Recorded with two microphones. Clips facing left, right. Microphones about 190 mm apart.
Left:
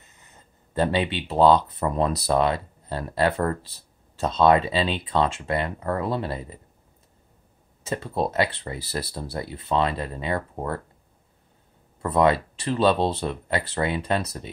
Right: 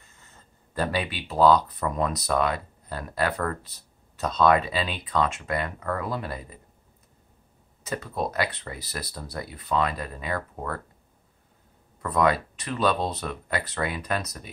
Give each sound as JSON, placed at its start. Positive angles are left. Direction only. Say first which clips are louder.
{"t": 0.0, "sound": "speech", "louder": "left 1 dB", "side_deg": 20}
{"t": 7.8, "sound": "speech", "louder": "left 3 dB", "side_deg": 30}
{"t": 12.0, "sound": "speech", "louder": "left 3 dB", "side_deg": 25}